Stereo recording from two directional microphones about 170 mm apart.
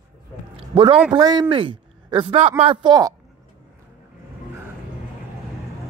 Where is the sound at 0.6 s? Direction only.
30° right (ahead or behind).